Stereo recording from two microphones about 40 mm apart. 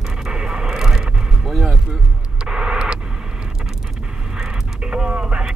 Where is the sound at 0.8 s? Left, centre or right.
Centre.